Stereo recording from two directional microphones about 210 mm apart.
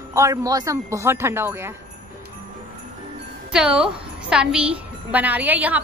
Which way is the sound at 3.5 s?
5° right (ahead or behind).